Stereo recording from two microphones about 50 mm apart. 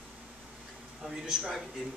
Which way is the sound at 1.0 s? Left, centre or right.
Centre.